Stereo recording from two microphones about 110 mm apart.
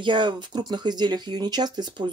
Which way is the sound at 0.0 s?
45° right (ahead or behind).